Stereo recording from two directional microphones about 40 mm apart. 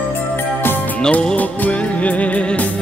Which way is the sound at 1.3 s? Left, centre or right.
Left.